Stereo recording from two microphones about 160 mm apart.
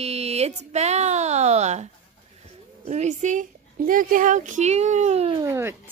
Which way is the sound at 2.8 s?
45° right (ahead or behind).